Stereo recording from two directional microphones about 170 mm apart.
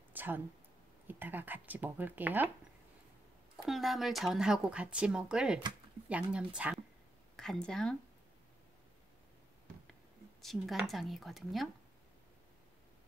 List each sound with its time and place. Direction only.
0.1 s a sound: 10° right (ahead or behind)
1.0 s speech: 10° right (ahead or behind)
3.6 s speech: centre (ahead or behind)
10.4 s speech: centre (ahead or behind)